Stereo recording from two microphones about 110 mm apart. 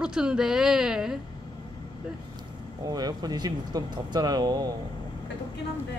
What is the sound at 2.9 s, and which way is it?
Speech, 35° right (ahead or behind).